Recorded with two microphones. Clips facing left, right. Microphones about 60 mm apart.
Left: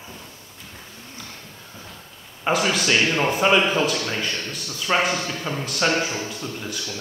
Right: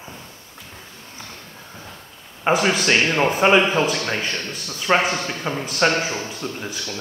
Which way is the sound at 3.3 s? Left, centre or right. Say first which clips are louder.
Right 3 dB; right.